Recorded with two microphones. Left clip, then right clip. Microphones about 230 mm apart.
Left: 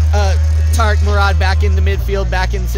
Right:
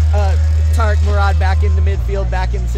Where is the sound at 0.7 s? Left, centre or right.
Left.